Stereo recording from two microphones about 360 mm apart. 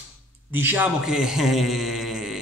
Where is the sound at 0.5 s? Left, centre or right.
Centre.